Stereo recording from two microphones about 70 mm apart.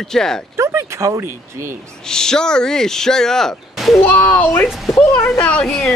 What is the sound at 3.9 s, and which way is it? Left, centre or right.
Speech, left.